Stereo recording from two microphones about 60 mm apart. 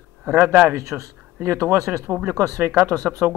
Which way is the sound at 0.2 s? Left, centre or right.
Right.